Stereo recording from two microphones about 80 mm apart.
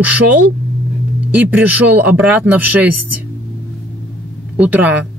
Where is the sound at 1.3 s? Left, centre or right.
Centre.